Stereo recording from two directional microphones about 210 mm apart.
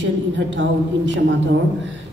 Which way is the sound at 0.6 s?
60° right (ahead or behind).